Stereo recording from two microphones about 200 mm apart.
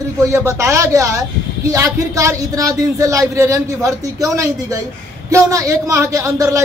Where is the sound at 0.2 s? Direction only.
15° right (ahead or behind).